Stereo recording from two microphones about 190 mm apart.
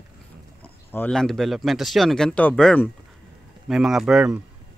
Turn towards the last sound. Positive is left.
turn(degrees=-5)  # may be behind; listen again after turning